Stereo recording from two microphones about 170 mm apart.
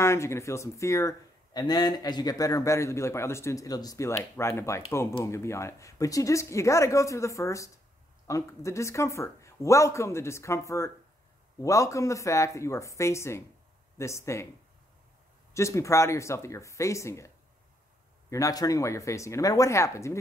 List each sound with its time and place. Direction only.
0.0 s speech: 15° left (ahead or behind)
15.5 s speech: 15° left (ahead or behind)
18.3 s speech: 20° left (ahead or behind)